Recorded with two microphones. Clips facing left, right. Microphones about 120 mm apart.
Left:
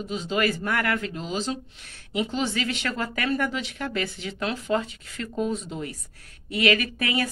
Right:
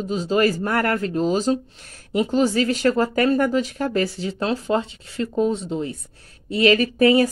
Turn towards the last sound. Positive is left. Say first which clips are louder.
# right 11 dB
turn(degrees=-35)  # may be behind; listen again after turning